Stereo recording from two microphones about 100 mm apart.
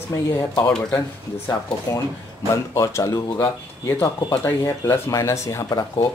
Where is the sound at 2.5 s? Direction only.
30° left (ahead or behind).